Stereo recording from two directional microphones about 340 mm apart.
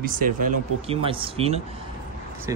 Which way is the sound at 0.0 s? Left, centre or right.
Right.